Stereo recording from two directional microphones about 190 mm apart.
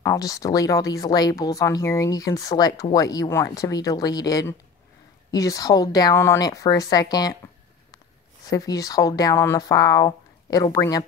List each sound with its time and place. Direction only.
0.0 s speech: 15° left (ahead or behind)
8.5 s speech: 20° left (ahead or behind)